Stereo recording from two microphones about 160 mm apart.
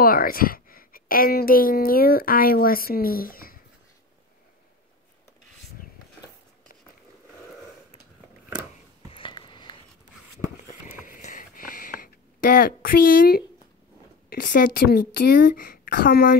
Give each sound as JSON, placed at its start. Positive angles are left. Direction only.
{"t": 0.0, "sound": "a woman's voice", "side_deg": 65}
{"t": 9.1, "sound": "a sound", "side_deg": 30}
{"t": 11.0, "sound": "sniff", "side_deg": 50}
{"t": 14.3, "sound": "a woman's voice", "side_deg": 65}